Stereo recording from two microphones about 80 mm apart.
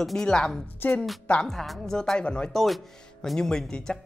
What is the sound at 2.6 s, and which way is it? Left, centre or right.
A man's voice, centre.